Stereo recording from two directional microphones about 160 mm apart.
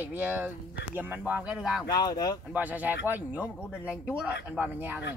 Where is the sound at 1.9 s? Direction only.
25° left (ahead or behind).